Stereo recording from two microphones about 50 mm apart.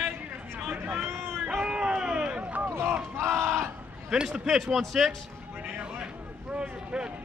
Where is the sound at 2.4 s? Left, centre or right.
Right.